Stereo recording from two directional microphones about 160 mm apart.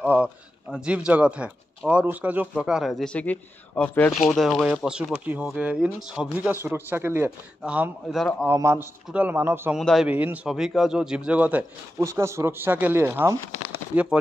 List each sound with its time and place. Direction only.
0.0 s a man's voice: 10° right (ahead or behind)
6.5 s a man's voice: 15° right (ahead or behind)
8.5 s a man's voice: 15° right (ahead or behind)
9.8 s speech: centre (ahead or behind)
10.0 s a man's voice: 10° right (ahead or behind)